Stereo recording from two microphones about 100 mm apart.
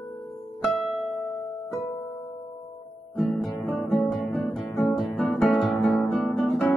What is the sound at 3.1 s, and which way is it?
Guitar, centre (ahead or behind).